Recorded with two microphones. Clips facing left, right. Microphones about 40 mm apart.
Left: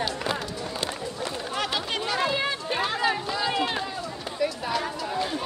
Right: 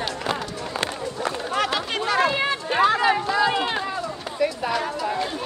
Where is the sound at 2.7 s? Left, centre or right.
Right.